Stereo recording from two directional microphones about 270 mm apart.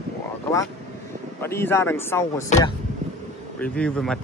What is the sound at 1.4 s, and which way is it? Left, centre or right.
Speech, centre.